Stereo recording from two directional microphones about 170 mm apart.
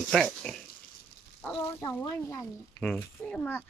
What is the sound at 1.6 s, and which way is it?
Speech, 15° left (ahead or behind).